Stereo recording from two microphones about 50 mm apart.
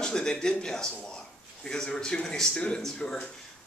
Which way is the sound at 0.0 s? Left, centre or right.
Centre.